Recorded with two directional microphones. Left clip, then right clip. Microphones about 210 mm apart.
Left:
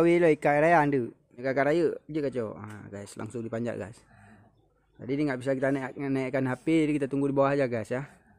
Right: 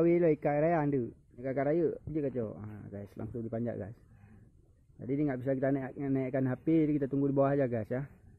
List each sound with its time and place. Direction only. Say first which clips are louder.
0.0 s speech: left 5 dB; 20° left (ahead or behind)
5.0 s speech: left 4 dB; 10° left (ahead or behind)